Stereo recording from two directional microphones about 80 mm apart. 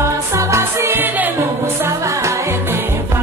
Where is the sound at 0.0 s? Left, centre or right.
Right.